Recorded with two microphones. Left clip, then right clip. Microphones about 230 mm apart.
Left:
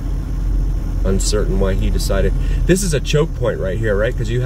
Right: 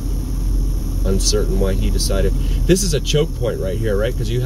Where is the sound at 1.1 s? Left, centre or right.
Centre.